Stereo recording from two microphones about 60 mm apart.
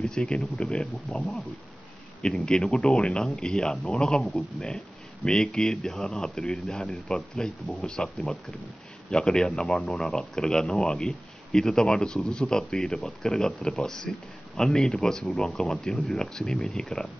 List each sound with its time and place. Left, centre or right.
0.0 s speech: centre
2.2 s speech: centre
4.2 s speech: centre